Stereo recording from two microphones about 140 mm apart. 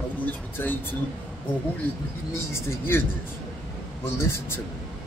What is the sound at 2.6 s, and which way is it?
Speech, 15° left (ahead or behind).